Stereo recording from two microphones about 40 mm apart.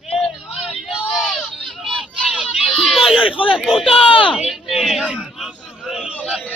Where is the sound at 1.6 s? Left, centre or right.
Centre.